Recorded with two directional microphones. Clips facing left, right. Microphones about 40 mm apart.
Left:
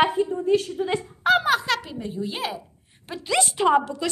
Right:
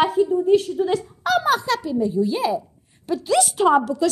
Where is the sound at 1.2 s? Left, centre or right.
Left.